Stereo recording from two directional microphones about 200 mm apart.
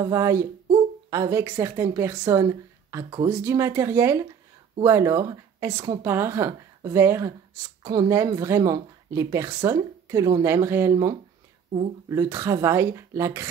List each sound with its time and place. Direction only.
0.0 s speech: 15° right (ahead or behind)